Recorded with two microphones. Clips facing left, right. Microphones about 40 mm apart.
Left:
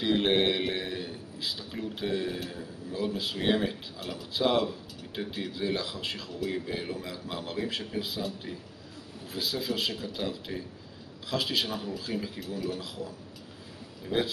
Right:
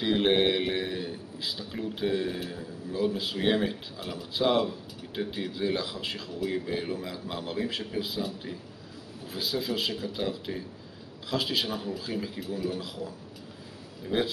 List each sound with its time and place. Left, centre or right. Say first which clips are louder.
0.0 s a man's voice: right 1 dB; centre